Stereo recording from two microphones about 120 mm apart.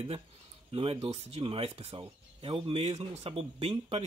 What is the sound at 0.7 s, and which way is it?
Speech, 50° right (ahead or behind).